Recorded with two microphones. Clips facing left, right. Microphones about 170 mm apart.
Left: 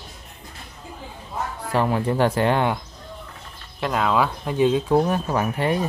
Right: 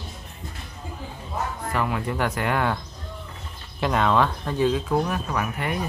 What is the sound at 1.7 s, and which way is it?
Speech, 30° left (ahead or behind).